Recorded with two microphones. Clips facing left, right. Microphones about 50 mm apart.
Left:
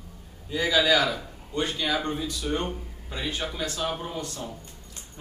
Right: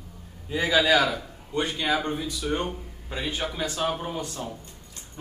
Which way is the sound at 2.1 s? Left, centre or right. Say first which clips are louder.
Right 1 dB; centre.